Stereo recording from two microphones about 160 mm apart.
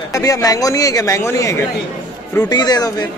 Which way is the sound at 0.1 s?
20° left (ahead or behind).